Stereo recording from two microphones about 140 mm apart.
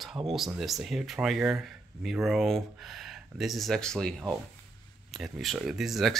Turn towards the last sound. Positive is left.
turn(degrees=0)  # may be behind; listen again after turning